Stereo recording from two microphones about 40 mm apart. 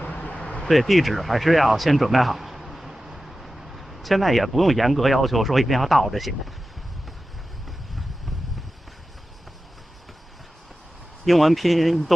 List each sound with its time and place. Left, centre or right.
0.0 s vehicle: left
0.7 s speech: centre
11.2 s speech: centre